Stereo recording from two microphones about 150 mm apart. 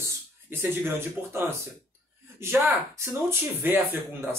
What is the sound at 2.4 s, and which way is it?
Speech, 15° right (ahead or behind).